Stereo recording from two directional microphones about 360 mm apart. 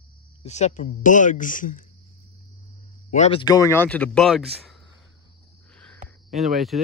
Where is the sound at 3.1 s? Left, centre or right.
Centre.